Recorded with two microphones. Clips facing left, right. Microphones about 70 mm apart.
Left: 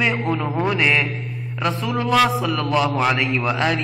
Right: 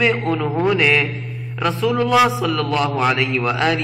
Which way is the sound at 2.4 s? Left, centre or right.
Centre.